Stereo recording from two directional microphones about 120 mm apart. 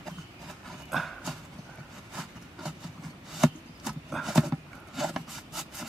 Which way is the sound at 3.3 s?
Centre (ahead or behind).